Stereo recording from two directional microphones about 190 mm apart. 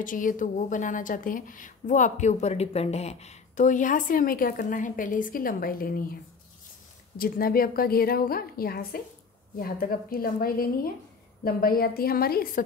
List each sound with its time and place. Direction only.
0.0 s a woman's voice: 45° left (ahead or behind)
7.2 s a woman's voice: 50° left (ahead or behind)